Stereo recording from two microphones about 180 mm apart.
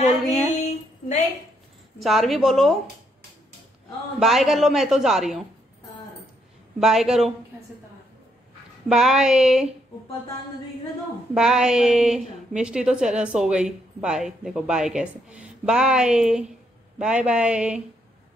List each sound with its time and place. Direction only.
0.6 s a sound: 40° left (ahead or behind)
2.0 s a woman's voice: centre (ahead or behind)
4.2 s a woman's voice: centre (ahead or behind)
6.8 s a woman's voice: centre (ahead or behind)
8.8 s a woman's voice: centre (ahead or behind)
11.3 s a woman's voice: 5° right (ahead or behind)